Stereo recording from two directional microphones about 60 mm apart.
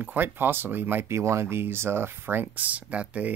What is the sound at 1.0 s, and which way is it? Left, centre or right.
Speech, right.